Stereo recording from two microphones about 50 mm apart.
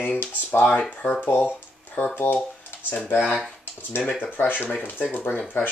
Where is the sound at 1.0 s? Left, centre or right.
Left.